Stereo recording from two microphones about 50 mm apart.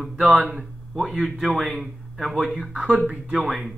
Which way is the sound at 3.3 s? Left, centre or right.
Centre.